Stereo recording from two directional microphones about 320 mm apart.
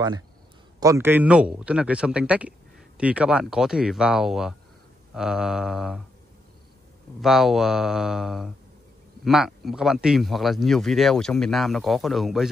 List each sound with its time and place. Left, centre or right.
0.7 s speech: centre
7.2 s speech: centre